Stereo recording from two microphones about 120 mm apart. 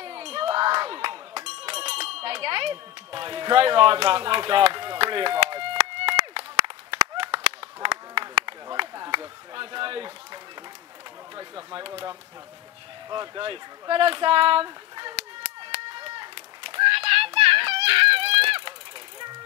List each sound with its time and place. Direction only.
0.0 s a sound: 50° right (ahead or behind)
6.6 s clapping: 45° right (ahead or behind)
11.3 s speech: 40° right (ahead or behind)
15.6 s run: 40° right (ahead or behind)